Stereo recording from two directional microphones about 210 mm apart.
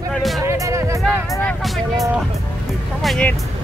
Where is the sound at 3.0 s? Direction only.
5° left (ahead or behind).